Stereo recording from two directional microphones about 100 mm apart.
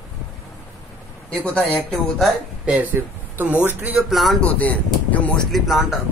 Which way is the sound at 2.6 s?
15° right (ahead or behind).